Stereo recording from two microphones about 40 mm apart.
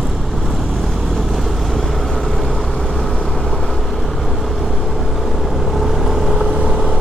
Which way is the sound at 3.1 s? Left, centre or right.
Centre.